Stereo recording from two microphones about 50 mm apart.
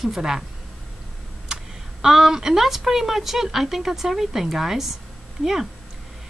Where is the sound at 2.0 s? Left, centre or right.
Centre.